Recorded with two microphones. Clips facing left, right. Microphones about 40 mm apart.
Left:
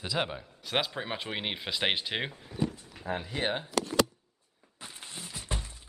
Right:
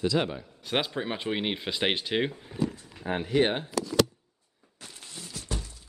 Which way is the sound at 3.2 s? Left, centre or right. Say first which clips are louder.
Right 12 dB; right.